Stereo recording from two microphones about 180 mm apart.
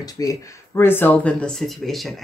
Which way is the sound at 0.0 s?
20° left (ahead or behind).